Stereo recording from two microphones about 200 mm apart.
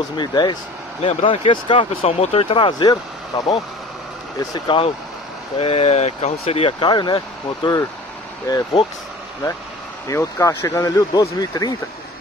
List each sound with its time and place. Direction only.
0.2 s speech: 20° left (ahead or behind)
10.0 s speech: 15° left (ahead or behind)